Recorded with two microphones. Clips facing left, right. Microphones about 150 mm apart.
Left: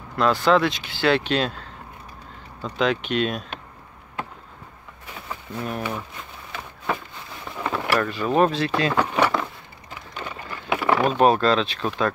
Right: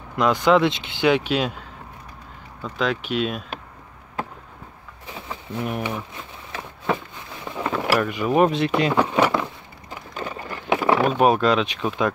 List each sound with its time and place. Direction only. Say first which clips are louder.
0.1 s speech: right 1 dB; 15° right (ahead or behind)
5.5 s speech: right 2 dB; 15° right (ahead or behind)
7.5 s speech: right 2 dB; 10° right (ahead or behind)
9.0 s a sound: right 2 dB; 15° right (ahead or behind)
10.1 s a sound: right 3 dB; 35° right (ahead or behind)
11.0 s speech: left 3 dB; 10° right (ahead or behind)